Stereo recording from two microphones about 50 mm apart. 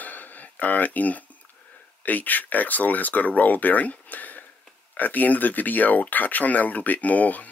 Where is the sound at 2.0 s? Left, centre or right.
Left.